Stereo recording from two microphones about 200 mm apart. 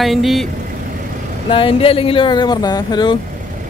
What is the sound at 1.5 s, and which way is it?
Speech, 25° left (ahead or behind).